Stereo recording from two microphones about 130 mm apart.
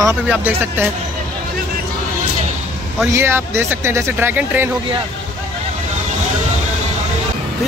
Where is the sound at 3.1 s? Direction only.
20° right (ahead or behind).